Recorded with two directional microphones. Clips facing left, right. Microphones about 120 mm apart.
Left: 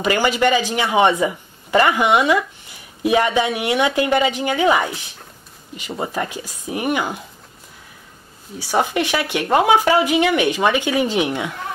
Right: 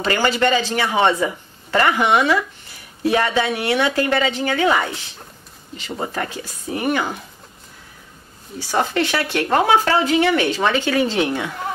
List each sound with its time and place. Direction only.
0.0 s speech: 15° left (ahead or behind)
8.5 s speech: 15° left (ahead or behind)